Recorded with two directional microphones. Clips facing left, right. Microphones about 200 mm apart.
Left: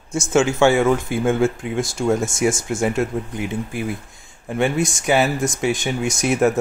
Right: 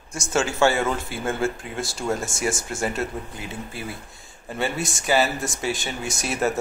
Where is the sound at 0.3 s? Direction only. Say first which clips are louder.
Left 5 dB; 15° left (ahead or behind).